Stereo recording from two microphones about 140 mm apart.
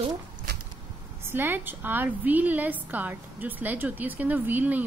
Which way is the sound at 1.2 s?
15° right (ahead or behind).